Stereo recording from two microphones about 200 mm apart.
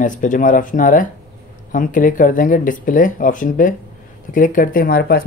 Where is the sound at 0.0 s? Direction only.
40° left (ahead or behind).